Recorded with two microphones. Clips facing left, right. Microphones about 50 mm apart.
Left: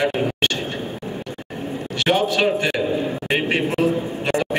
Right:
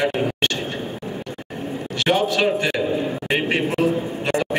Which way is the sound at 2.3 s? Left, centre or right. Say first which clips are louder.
Even; left.